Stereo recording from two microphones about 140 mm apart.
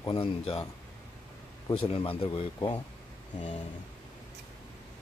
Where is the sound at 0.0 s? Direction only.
40° left (ahead or behind).